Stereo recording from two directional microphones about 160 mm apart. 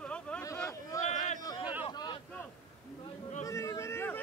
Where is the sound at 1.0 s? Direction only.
45° left (ahead or behind).